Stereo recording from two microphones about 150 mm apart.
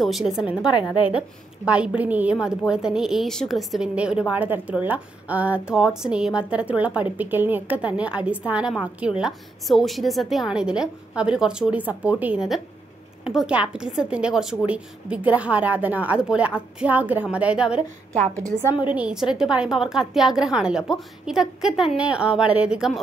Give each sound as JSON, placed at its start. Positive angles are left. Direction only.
{"t": 0.0, "sound": "a woman's voice", "side_deg": 0}
{"t": 0.7, "sound": "a woman's voice", "side_deg": 30}
{"t": 1.7, "sound": "a woman's voice", "side_deg": -10}
{"t": 18.9, "sound": "a woman's voice", "side_deg": -5}